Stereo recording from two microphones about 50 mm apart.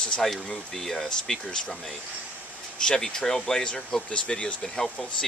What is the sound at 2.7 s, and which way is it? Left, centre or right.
Speech, centre.